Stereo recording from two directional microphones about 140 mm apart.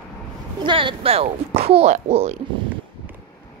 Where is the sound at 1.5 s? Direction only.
50° right (ahead or behind).